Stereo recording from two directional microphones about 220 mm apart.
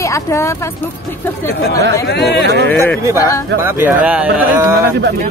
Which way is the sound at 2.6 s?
10° left (ahead or behind).